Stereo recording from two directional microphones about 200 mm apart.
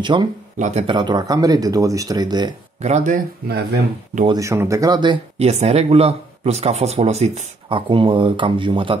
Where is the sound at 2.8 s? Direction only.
35° right (ahead or behind).